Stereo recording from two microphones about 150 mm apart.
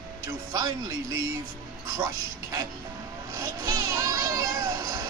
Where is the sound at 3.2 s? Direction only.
25° right (ahead or behind).